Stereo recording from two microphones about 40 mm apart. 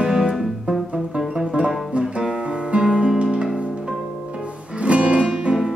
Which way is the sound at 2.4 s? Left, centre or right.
Right.